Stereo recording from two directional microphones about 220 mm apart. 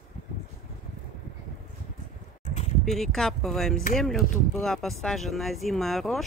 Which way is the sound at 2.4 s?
30° left (ahead or behind).